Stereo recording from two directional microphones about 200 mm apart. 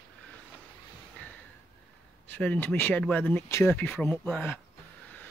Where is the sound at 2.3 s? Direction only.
10° left (ahead or behind).